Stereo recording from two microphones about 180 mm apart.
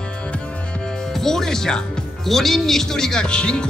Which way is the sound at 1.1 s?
Centre (ahead or behind).